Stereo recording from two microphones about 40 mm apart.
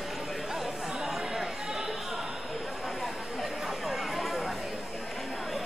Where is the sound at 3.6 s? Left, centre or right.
Centre.